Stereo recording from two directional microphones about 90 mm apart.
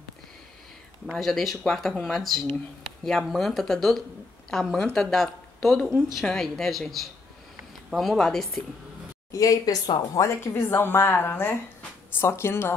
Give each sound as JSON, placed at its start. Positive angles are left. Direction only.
{"t": 1.1, "sound": "speech", "side_deg": 0}
{"t": 9.3, "sound": "speech", "side_deg": 40}